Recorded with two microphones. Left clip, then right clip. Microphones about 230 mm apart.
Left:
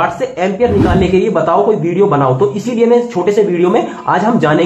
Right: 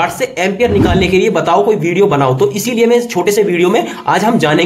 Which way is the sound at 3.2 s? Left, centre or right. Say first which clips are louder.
Even; right.